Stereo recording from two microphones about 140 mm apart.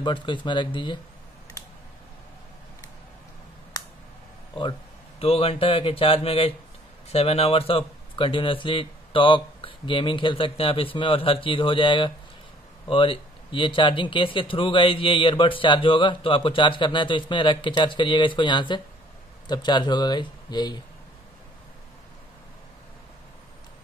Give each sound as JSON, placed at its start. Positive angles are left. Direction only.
{"t": 0.0, "sound": "speech", "side_deg": 35}
{"t": 5.2, "sound": "speech", "side_deg": 45}